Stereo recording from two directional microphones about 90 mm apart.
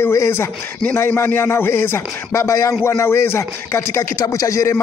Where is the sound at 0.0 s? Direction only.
30° left (ahead or behind).